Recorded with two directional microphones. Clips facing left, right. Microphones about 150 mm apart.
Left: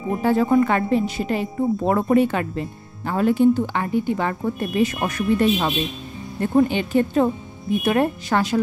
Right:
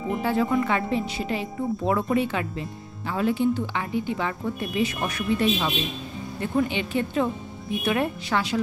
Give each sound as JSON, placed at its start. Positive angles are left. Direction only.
{"t": 0.2, "sound": "speech", "side_deg": 45}